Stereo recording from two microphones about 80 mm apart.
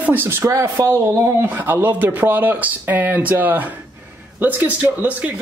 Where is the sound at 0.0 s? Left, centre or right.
Right.